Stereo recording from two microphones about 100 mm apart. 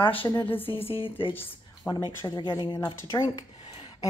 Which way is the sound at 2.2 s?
45° left (ahead or behind).